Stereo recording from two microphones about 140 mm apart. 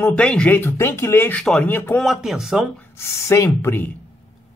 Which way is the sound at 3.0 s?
20° left (ahead or behind).